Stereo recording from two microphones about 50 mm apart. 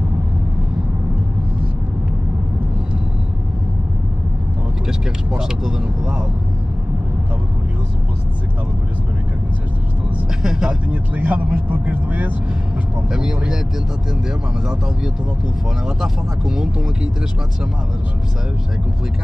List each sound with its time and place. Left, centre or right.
5.4 s vehicle: centre
10.4 s vehicle: centre
10.9 s vehicle: right
13.1 s vehicle: centre
16.0 s speech: centre